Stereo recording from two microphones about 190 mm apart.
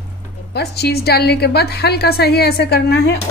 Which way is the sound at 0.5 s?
60° left (ahead or behind).